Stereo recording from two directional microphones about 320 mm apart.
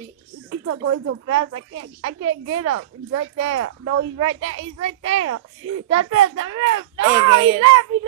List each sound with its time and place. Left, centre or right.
0.7 s speech: right
4.0 s a child's voice: right
5.9 s speech: right